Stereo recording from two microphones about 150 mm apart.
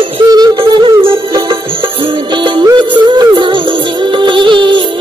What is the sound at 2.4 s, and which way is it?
Music, 30° right (ahead or behind).